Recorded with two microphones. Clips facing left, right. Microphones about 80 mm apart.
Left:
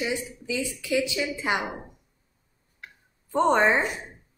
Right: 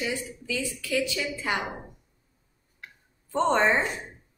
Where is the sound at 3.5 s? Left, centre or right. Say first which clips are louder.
Left 2 dB; centre.